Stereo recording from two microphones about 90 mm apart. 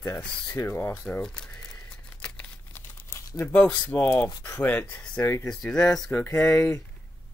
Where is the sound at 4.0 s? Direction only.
30° left (ahead or behind).